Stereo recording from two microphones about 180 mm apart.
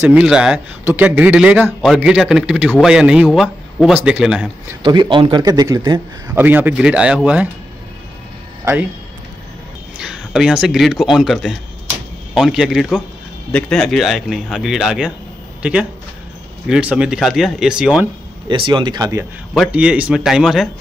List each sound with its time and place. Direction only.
0.0 s a man's voice: 5° right (ahead or behind)
4.8 s a man's voice: 25° right (ahead or behind)
6.3 s speech: 10° right (ahead or behind)
9.9 s a man's voice: 5° right (ahead or behind)
18.5 s a man's voice: 25° right (ahead or behind)
19.5 s a man's voice: 5° right (ahead or behind)